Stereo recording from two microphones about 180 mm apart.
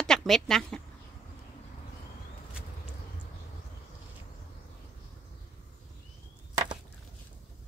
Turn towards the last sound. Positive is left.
turn(degrees=-20)  # may be behind; listen again after turning